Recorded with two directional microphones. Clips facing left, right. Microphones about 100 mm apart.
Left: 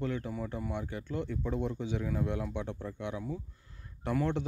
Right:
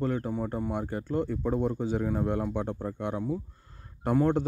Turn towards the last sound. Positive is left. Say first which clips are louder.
# right 7 dB
turn(degrees=-40)  # may be behind; listen again after turning